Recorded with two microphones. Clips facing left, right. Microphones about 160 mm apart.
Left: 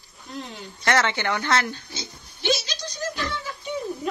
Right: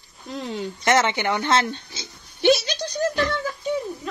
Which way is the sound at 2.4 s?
60° right (ahead or behind).